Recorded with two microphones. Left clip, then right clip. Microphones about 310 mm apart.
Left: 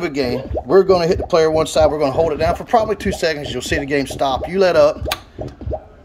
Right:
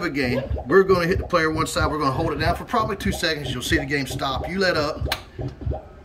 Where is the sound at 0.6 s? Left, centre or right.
Left.